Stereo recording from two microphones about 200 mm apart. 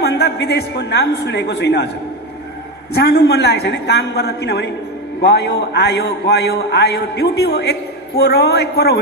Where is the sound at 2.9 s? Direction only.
55° left (ahead or behind).